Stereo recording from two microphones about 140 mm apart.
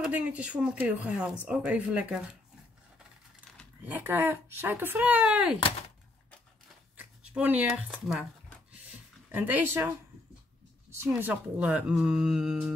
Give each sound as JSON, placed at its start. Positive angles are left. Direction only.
{"t": 0.0, "sound": "speech", "side_deg": -10}
{"t": 3.8, "sound": "speech", "side_deg": -15}
{"t": 5.6, "sound": "speech", "side_deg": 45}
{"t": 7.0, "sound": "speech", "side_deg": -10}
{"t": 9.3, "sound": "speech", "side_deg": -15}
{"t": 11.1, "sound": "speech", "side_deg": -10}